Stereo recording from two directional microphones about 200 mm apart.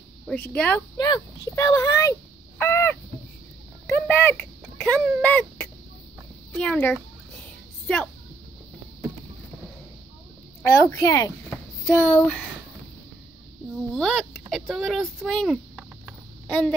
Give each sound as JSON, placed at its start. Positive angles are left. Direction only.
{"t": 0.3, "sound": "speech", "side_deg": 5}
{"t": 0.9, "sound": "speech", "side_deg": 20}
{"t": 2.6, "sound": "crow", "side_deg": 10}
{"t": 3.8, "sound": "speech", "side_deg": 10}
{"t": 10.6, "sound": "a child's voice", "side_deg": 15}
{"t": 13.9, "sound": "speech", "side_deg": 5}